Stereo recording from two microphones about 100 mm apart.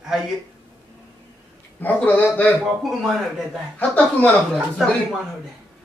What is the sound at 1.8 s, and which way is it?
Speech, 15° left (ahead or behind).